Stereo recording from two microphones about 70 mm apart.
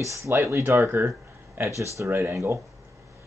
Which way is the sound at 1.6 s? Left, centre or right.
Right.